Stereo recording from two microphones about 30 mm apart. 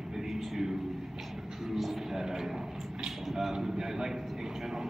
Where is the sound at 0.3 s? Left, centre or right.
Centre.